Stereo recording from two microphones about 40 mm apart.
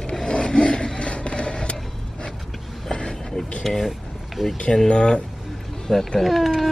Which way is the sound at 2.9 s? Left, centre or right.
Centre.